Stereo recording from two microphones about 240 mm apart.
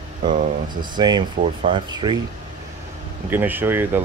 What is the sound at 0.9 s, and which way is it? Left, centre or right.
Speech, centre.